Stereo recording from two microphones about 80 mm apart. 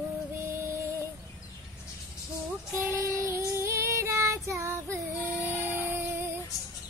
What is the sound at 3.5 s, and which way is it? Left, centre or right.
Female singing, right.